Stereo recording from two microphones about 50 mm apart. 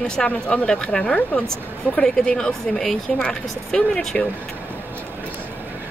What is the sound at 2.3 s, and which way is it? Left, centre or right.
Speech, centre.